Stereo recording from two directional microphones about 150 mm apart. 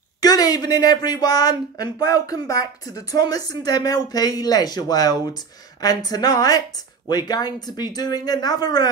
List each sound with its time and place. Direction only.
0.2 s speech: 25° left (ahead or behind)